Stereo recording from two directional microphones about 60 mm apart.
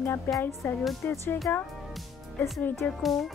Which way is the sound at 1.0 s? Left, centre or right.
Left.